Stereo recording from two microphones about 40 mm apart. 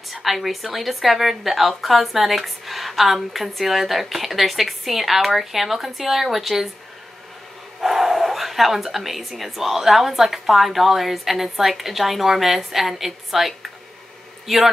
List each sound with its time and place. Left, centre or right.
0.1 s a woman's voice: centre
7.8 s a sound: centre
9.4 s a woman's voice: centre